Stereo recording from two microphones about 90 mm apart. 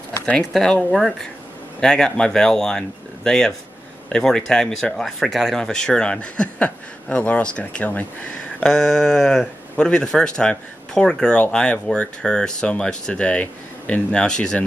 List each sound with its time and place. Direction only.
0.3 s speech: 5° left (ahead or behind)
8.5 s speech: 5° left (ahead or behind)